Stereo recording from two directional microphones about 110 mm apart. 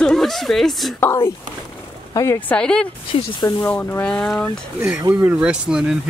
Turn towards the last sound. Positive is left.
turn(degrees=-10)  # may be behind; listen again after turning